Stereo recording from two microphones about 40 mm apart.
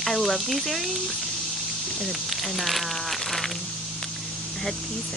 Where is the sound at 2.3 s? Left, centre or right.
Centre.